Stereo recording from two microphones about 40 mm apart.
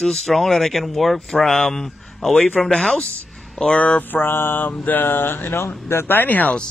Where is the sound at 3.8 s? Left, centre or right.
Left.